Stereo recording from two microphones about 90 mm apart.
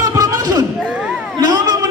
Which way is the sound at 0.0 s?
40° right (ahead or behind).